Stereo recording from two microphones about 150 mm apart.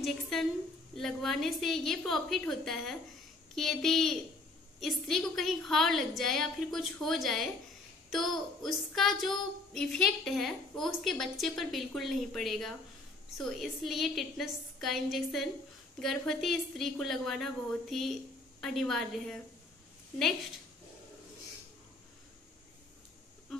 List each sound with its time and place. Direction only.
0.0 s a woman's voice: centre (ahead or behind)